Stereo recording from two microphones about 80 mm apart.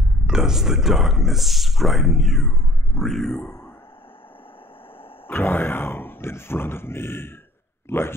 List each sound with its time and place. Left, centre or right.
0.3 s speech: centre
5.3 s speech: left